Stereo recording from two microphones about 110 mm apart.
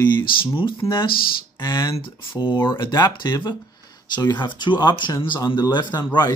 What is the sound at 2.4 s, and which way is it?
Speech, 50° left (ahead or behind).